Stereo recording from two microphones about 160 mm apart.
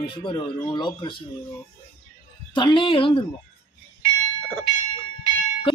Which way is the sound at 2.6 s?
30° left (ahead or behind).